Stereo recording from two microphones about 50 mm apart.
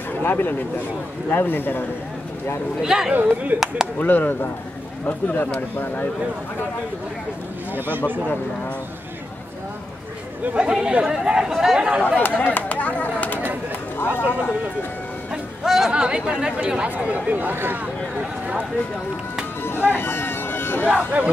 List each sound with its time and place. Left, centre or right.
0.2 s a man's voice: left
2.8 s speech: centre
3.2 s speech: right
3.5 s speech: centre
4.0 s a man's voice: left
7.7 s speech: right
10.4 s speech: right
12.2 s speech: left
15.6 s chatter: centre
15.9 s speech: centre
16.9 s speech: right
19.9 s a sound: left
20.9 s speech: right